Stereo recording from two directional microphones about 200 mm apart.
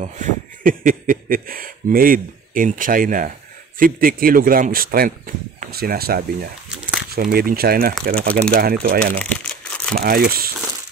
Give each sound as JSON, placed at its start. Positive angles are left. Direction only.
{"t": 0.0, "sound": "speech", "side_deg": -40}
{"t": 9.2, "sound": "crumpling", "side_deg": 5}
{"t": 9.9, "sound": "speech", "side_deg": -45}